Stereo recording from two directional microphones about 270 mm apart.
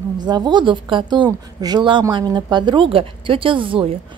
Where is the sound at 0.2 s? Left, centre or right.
Centre.